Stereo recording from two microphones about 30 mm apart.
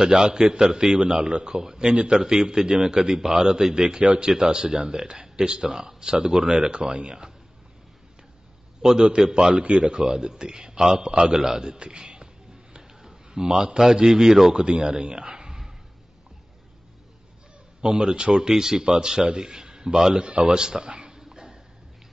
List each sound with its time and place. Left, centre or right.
0.0 s a man's voice: centre
4.0 s speech: right
4.5 s a man's voice: right
5.7 s a man's voice: centre
8.8 s a man's voice: right
9.5 s speech: right
10.0 s a man's voice: right
12.0 s a sound: right
14.0 s speech: centre
14.5 s a man's voice: right
17.8 s a man's voice: right
20.2 s a sound: right